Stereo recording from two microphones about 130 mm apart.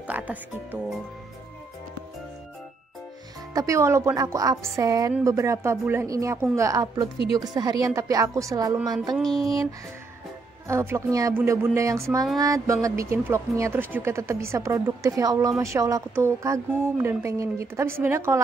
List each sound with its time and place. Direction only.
0.0 s speech: 10° right (ahead or behind)
3.5 s a woman's voice: 25° right (ahead or behind)
9.1 s a sound: centre (ahead or behind)
10.7 s speech: 20° right (ahead or behind)